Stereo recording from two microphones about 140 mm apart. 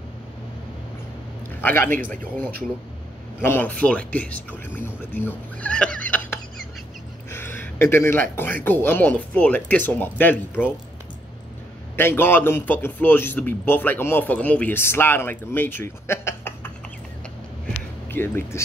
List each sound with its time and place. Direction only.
1.6 s a man's voice: 15° left (ahead or behind)
7.2 s a sound: 15° left (ahead or behind)
8.6 s speech: 15° left (ahead or behind)
12.0 s speech: 15° left (ahead or behind)
18.1 s speech: 15° left (ahead or behind)